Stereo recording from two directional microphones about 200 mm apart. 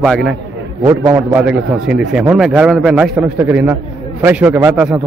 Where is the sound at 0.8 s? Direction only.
10° right (ahead or behind).